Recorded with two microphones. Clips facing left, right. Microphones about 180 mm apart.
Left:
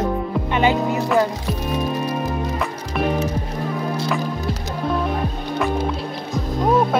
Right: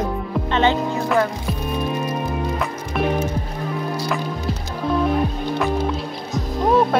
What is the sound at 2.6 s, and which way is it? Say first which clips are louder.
Music: even; centre (ahead or behind).